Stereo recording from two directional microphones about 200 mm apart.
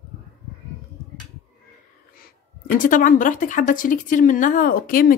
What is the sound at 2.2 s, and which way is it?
A woman's voice, 40° left (ahead or behind).